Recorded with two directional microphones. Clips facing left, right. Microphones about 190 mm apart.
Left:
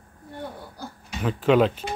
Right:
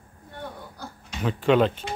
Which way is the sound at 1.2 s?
5° left (ahead or behind).